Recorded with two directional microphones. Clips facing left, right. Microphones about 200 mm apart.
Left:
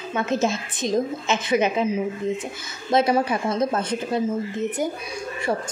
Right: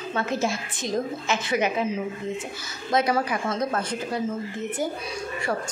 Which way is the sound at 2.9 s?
25° left (ahead or behind).